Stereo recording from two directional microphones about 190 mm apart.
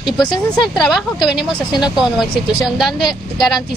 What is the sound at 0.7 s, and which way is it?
Speech, centre (ahead or behind).